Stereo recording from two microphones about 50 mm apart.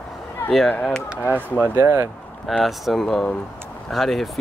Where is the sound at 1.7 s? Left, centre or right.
Right.